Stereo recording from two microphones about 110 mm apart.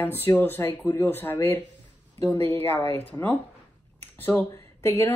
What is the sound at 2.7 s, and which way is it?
Speech, 15° left (ahead or behind).